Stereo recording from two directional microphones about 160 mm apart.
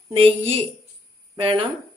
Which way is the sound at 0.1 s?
40° right (ahead or behind).